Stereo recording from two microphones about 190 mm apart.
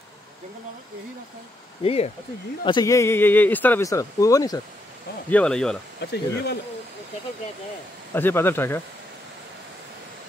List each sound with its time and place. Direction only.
1.8 s speech: 30° left (ahead or behind)
2.6 s speech: 20° left (ahead or behind)
5.3 s speech: 5° left (ahead or behind)
5.9 s speech: 60° left (ahead or behind)
8.1 s speech: 10° left (ahead or behind)